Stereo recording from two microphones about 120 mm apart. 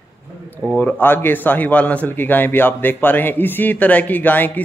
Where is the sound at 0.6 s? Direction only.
15° left (ahead or behind).